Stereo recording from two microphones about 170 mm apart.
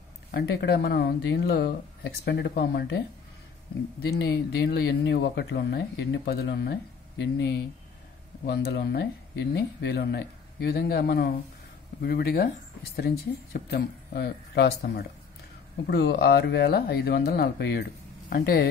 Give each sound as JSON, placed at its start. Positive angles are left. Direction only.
{"t": 0.3, "sound": "speech", "side_deg": 70}
{"t": 4.2, "sound": "speech", "side_deg": 75}
{"t": 8.5, "sound": "speech", "side_deg": 70}
{"t": 18.3, "sound": "speech", "side_deg": 60}